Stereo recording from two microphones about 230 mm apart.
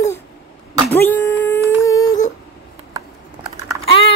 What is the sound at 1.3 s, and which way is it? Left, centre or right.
Humming, centre.